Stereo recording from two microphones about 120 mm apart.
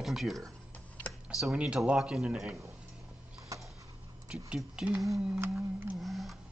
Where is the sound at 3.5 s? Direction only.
25° right (ahead or behind).